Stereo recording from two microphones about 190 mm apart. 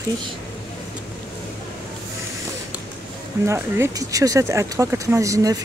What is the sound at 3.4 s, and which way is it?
Speech, 15° right (ahead or behind).